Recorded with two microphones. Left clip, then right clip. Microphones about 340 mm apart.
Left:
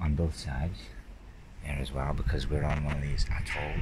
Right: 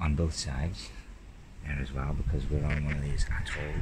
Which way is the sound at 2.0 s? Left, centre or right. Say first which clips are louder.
Left 4 dB; left.